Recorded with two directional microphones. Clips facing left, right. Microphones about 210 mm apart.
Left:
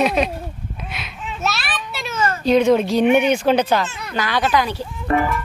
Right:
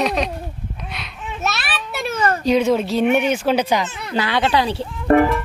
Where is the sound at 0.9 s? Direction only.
5° left (ahead or behind).